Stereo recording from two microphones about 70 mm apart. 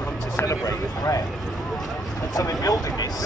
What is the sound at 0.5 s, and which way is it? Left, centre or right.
Speech, left.